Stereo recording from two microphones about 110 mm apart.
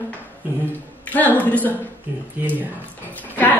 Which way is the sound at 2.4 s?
20° right (ahead or behind).